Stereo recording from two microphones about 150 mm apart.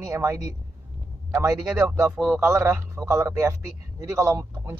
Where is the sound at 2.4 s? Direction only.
15° right (ahead or behind).